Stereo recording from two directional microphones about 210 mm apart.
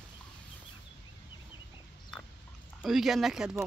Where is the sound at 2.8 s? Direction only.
Centre (ahead or behind).